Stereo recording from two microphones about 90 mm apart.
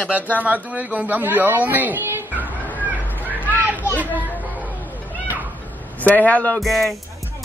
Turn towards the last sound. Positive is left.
turn(degrees=0)  # may be behind; listen again after turning